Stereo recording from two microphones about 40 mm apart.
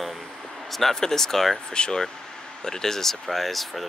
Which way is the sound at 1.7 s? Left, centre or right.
Left.